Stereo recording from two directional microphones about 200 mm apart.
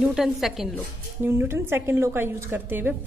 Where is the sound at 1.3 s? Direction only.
10° right (ahead or behind).